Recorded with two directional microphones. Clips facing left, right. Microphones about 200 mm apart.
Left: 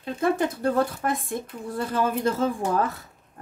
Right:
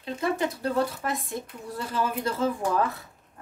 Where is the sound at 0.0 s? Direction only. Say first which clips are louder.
Left 4 dB; 50° left (ahead or behind).